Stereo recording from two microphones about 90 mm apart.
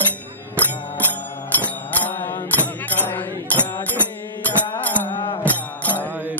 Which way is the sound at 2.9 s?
20° left (ahead or behind).